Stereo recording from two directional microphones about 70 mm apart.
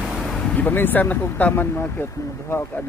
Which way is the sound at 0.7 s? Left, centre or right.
Left.